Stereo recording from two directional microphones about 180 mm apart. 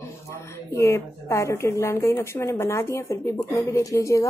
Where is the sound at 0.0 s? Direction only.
15° left (ahead or behind).